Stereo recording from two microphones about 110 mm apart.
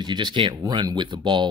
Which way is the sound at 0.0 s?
40° right (ahead or behind).